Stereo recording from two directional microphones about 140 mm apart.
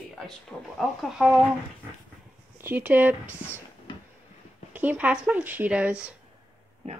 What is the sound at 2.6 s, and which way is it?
Speech, 15° right (ahead or behind).